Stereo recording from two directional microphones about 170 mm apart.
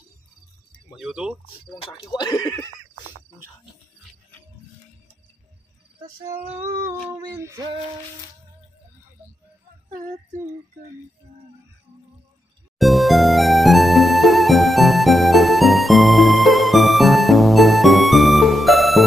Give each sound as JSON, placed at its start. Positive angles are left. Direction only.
{"t": 0.9, "sound": "speech", "side_deg": -5}
{"t": 1.7, "sound": "speech", "side_deg": 25}
{"t": 6.4, "sound": "a sound", "side_deg": -10}
{"t": 12.7, "sound": "music", "side_deg": 0}